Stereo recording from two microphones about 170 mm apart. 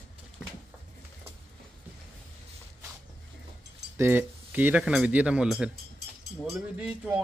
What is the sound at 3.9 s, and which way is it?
Speech, 15° right (ahead or behind).